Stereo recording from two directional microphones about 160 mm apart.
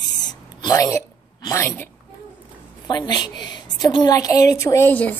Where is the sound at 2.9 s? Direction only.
25° left (ahead or behind); by 5.1 s 10° left (ahead or behind).